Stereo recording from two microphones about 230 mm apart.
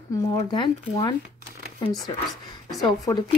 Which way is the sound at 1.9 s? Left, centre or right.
Centre.